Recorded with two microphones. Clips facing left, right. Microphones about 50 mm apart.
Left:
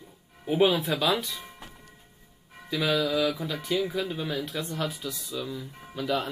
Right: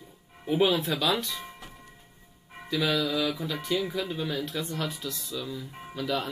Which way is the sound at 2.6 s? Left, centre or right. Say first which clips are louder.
Left 1 dB; centre.